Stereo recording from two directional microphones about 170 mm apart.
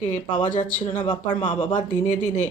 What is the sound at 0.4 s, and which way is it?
Speech, 45° left (ahead or behind).